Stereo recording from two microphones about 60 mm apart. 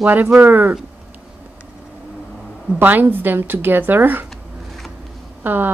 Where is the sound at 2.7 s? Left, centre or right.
Right.